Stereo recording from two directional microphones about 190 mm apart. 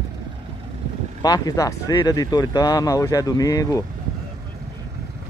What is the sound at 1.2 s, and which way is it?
Speech, 20° left (ahead or behind).